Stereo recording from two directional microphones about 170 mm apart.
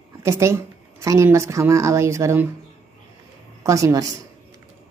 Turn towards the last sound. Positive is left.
turn(degrees=-20)  # may be behind; listen again after turning